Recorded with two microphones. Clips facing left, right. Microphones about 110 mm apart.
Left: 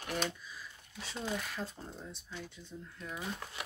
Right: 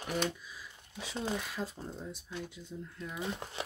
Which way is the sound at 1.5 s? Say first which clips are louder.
Right 3 dB; 10° right (ahead or behind).